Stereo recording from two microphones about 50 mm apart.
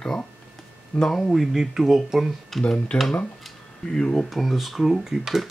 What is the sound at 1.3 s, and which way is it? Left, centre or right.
Speech, centre.